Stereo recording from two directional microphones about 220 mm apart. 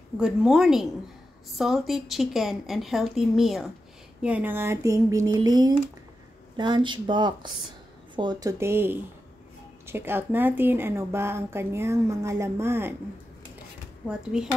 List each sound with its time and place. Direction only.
0.2 s a woman's voice: 5° right (ahead or behind)
14.0 s a woman's voice: 5° right (ahead or behind)